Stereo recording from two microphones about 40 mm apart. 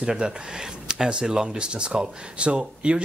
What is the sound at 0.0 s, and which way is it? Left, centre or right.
Speech, centre.